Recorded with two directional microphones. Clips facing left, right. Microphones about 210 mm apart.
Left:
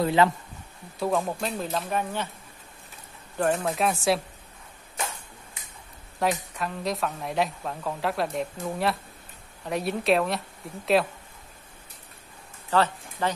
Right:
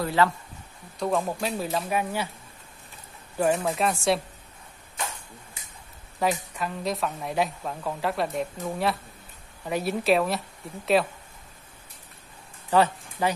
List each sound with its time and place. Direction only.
0.0 s speech: 20° left (ahead or behind)
0.9 s speech: centre (ahead or behind)
3.3 s speech: 5° right (ahead or behind)
6.1 s speech: centre (ahead or behind)
12.6 s speech: 15° right (ahead or behind)